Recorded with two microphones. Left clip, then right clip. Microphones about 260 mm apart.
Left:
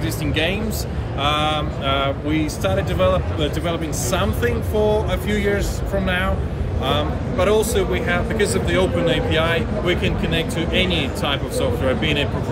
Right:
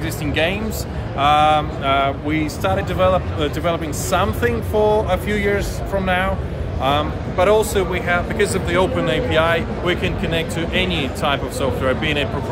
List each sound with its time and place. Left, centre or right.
0.2 s speech: centre